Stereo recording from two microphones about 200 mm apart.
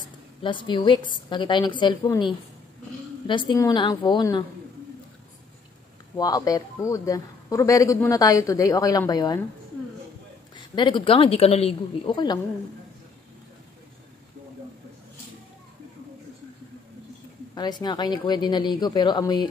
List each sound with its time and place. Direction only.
0.4 s speech: 25° left (ahead or behind)
6.1 s speech: 20° left (ahead or behind)
10.5 s speech: 20° left (ahead or behind)
17.6 s speech: 20° left (ahead or behind)